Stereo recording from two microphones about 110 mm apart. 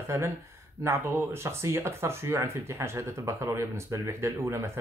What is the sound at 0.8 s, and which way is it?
Speech, 25° right (ahead or behind).